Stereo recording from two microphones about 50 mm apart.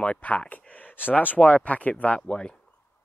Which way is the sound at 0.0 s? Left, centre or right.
Left.